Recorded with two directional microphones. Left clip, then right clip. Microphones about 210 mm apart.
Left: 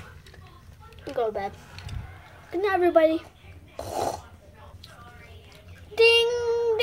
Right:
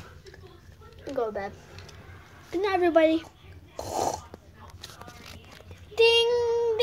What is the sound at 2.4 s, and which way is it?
Speech, 5° left (ahead or behind).